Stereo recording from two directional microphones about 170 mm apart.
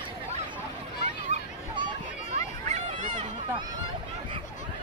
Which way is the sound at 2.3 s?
45° right (ahead or behind).